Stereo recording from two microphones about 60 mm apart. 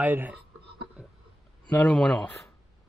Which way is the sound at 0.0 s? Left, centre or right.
Right.